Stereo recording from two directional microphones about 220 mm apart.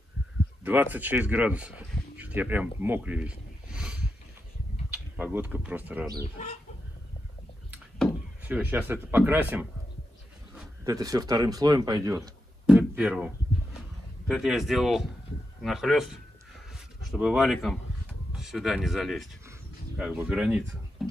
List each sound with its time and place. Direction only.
0.7 s speech: 10° right (ahead or behind)
7.7 s a sound: 5° right (ahead or behind)
10.5 s speech: 15° right (ahead or behind)
12.2 s speech: 5° right (ahead or behind)